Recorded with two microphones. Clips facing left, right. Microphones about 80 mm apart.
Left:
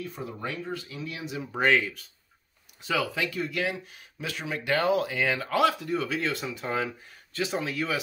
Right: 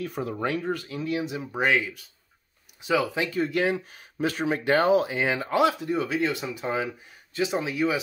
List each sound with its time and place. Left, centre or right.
0.0 s speech: right
1.1 s speech: right
1.5 s speech: centre
2.8 s speech: centre